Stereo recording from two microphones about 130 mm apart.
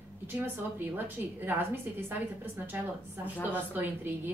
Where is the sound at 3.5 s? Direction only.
15° right (ahead or behind).